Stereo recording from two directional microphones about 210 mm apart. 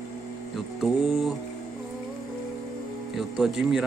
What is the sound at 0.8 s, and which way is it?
Speech, centre (ahead or behind).